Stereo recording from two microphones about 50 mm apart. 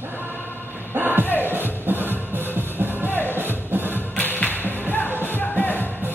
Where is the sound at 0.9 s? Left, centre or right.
Right.